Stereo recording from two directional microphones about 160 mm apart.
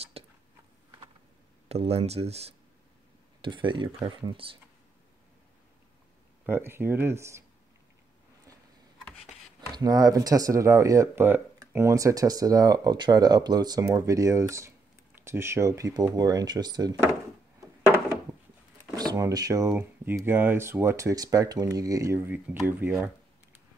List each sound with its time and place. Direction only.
0.2 s a sound: 40° right (ahead or behind)
1.7 s speech: 40° right (ahead or behind)
3.3 s speech: 30° right (ahead or behind)
6.4 s speech: 15° right (ahead or behind)
9.8 s speech: 25° right (ahead or behind)
18.9 s speech: 25° right (ahead or behind)